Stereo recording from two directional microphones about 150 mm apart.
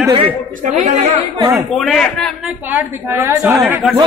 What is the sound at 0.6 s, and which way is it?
Speech, 50° right (ahead or behind).